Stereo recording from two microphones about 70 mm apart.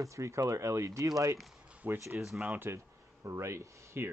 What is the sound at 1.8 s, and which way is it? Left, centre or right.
Speech, right.